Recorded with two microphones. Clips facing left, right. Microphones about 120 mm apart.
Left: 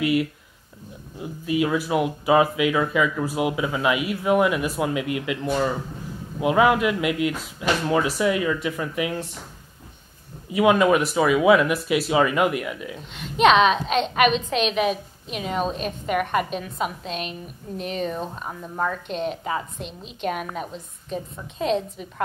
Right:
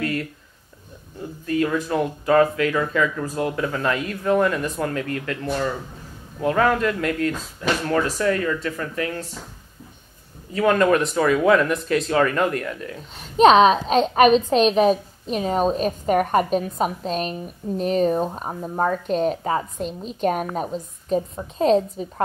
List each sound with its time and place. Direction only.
0.0 s speech: 10° left (ahead or behind)
10.5 s speech: 10° left (ahead or behind)
13.1 s a woman's voice: 35° right (ahead or behind)